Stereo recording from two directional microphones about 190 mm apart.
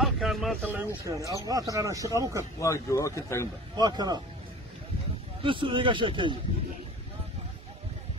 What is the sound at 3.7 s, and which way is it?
Speech, 20° right (ahead or behind).